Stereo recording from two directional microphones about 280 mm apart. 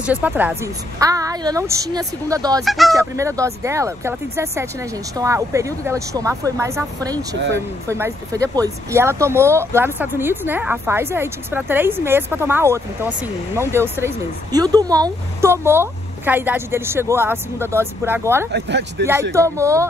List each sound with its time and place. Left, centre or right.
0.0 s speech: centre
2.6 s speech: centre
3.0 s speech: centre
18.5 s speech: right
19.3 s speech: centre